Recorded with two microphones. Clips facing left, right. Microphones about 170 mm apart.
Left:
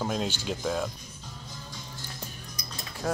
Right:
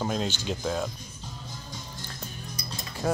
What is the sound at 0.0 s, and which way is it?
Speech, 5° left (ahead or behind).